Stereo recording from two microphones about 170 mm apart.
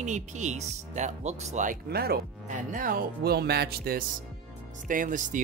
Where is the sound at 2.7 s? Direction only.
55° right (ahead or behind).